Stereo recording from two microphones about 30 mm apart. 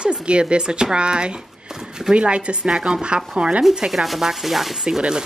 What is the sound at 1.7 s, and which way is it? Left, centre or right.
Speech, right.